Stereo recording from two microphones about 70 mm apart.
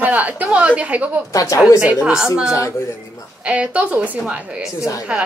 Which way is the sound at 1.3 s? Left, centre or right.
Left.